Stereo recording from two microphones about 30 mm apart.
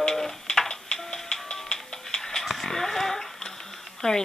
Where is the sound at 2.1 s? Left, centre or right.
Centre.